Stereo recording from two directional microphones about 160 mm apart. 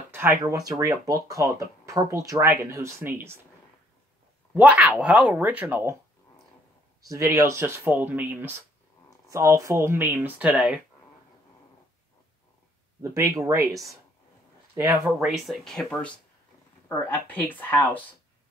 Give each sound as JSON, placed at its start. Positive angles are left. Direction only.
{"t": 0.1, "sound": "a sound", "side_deg": -15}
{"t": 0.5, "sound": "speech", "side_deg": -20}
{"t": 4.6, "sound": "speech", "side_deg": -5}
{"t": 7.1, "sound": "speech", "side_deg": -20}
{"t": 13.0, "sound": "speech", "side_deg": -20}
{"t": 15.2, "sound": "speech", "side_deg": 0}